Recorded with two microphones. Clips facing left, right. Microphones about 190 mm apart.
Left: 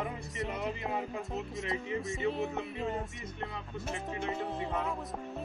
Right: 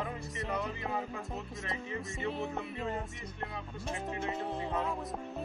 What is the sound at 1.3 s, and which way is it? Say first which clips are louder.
Music: left 4 dB; centre (ahead or behind).